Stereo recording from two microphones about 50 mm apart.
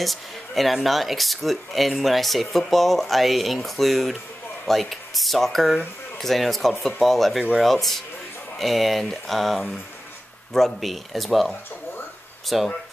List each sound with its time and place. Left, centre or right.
0.0 s speech: centre